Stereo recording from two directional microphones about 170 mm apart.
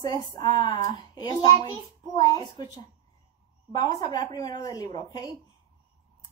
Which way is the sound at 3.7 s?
25° left (ahead or behind).